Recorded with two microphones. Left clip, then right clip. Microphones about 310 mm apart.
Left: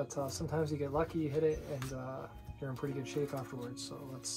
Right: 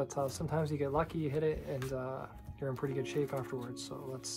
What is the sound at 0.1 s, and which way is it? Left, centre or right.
Speech, right.